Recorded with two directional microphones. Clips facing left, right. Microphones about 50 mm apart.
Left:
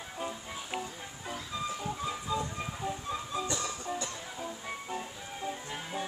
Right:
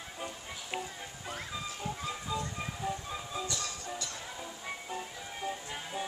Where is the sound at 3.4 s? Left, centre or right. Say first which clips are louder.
Left 3 dB; left.